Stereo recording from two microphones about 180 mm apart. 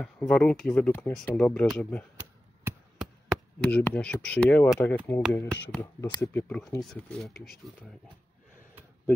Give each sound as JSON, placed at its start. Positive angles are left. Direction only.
{"t": 0.0, "sound": "speech", "side_deg": 5}
{"t": 2.1, "sound": "a sound", "side_deg": -15}
{"t": 3.3, "sound": "speech", "side_deg": 5}
{"t": 6.4, "sound": "speech", "side_deg": 5}